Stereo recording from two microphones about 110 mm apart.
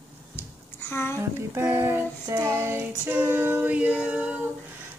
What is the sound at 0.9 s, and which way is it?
Speech, 20° left (ahead or behind).